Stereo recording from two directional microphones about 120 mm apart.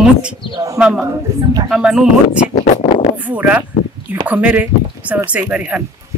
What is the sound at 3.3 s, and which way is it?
Speech, 15° right (ahead or behind).